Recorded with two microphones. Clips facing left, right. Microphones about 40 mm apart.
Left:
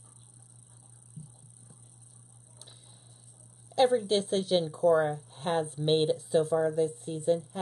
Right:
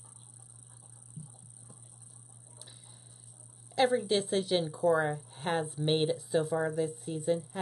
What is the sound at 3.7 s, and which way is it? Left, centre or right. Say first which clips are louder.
A woman's voice: left 3 dB; centre.